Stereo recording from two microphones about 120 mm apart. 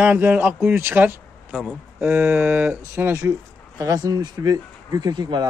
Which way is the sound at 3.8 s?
30° right (ahead or behind).